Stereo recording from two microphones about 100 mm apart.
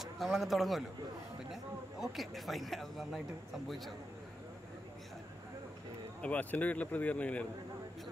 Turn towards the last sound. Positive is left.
turn(degrees=15)  # may be behind; listen again after turning